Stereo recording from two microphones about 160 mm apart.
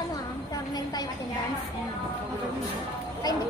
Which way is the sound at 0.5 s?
25° left (ahead or behind).